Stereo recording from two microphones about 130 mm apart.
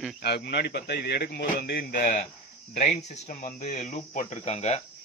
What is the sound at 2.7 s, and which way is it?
Speech, 60° left (ahead or behind).